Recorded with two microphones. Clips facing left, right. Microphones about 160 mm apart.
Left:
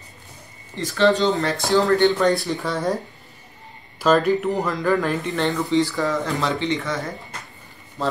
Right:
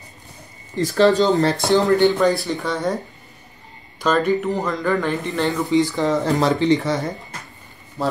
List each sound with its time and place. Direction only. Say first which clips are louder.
0.7 s speech: right 3 dB; 40° right (ahead or behind)
1.6 s speech: right 2 dB; 20° right (ahead or behind)
2.0 s speech: right 1 dB; centre (ahead or behind)
4.0 s speech: left 1 dB; centre (ahead or behind)
5.7 s speech: right 2 dB; 15° right (ahead or behind)
6.2 s speech: right 6 dB; 40° right (ahead or behind)
8.0 s speech: right 2 dB; 10° right (ahead or behind)